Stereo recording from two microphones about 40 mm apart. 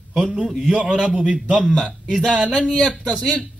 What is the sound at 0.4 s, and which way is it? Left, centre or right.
Speech, centre.